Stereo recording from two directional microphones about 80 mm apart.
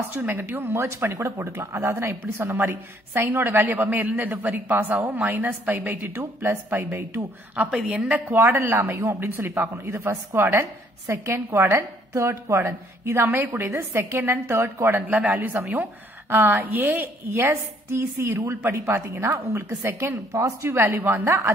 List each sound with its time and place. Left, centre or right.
0.1 s speech: right
7.7 s a woman's voice: centre
8.4 s a woman's voice: right